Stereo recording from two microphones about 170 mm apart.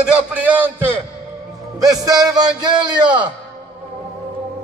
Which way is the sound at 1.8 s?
20° right (ahead or behind).